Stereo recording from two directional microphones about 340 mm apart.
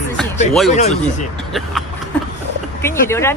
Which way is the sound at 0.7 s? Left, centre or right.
Left.